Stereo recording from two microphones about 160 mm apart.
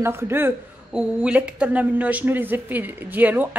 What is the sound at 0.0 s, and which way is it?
Speech, 15° right (ahead or behind).